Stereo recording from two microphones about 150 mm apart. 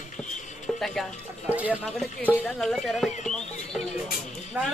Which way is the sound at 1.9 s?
10° left (ahead or behind).